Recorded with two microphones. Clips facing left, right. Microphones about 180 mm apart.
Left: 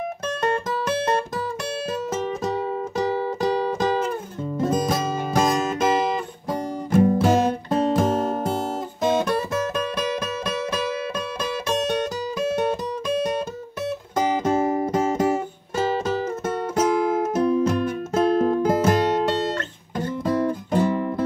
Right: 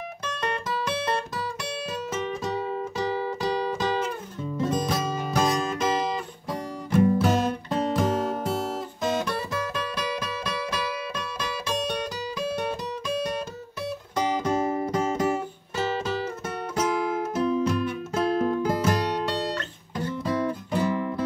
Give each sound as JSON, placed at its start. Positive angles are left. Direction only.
{"t": 0.2, "sound": "music", "side_deg": 50}
{"t": 7.7, "sound": "guitar", "side_deg": 50}
{"t": 14.1, "sound": "music", "side_deg": 50}